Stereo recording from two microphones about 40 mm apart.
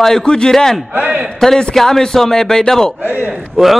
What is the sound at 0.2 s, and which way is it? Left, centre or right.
Speech, left.